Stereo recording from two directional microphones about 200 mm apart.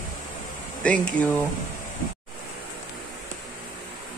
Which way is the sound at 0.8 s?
5° left (ahead or behind).